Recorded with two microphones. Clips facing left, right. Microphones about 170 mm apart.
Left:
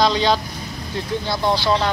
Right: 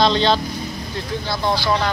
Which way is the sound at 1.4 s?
20° left (ahead or behind).